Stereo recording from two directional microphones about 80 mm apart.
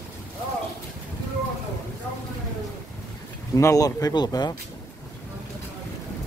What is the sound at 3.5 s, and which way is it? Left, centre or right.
Speech, left.